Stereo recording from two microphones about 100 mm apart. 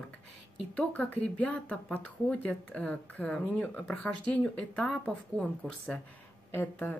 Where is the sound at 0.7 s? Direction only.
15° left (ahead or behind).